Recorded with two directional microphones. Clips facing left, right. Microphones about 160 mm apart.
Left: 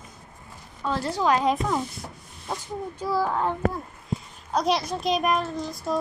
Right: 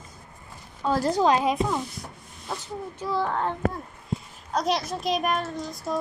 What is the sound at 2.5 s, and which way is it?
Speech, 10° left (ahead or behind).